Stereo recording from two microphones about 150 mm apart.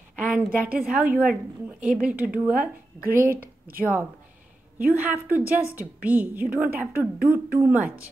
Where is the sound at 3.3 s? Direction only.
75° right (ahead or behind).